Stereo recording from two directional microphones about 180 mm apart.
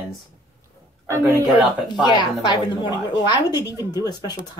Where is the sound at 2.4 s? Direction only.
25° left (ahead or behind).